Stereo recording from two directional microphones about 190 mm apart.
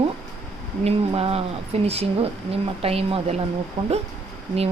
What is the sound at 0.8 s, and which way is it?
Speech, 30° right (ahead or behind).